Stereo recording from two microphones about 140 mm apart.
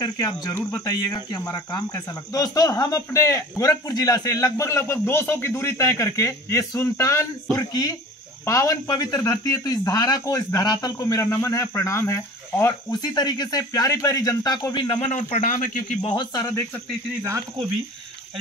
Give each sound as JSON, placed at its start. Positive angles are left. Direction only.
{"t": 0.0, "sound": "speech", "side_deg": 25}
{"t": 0.6, "sound": "speech", "side_deg": 10}
{"t": 0.8, "sound": "speech", "side_deg": 25}
{"t": 15.0, "sound": "speech", "side_deg": 60}
{"t": 16.0, "sound": "speech", "side_deg": 35}
{"t": 17.2, "sound": "speech", "side_deg": -20}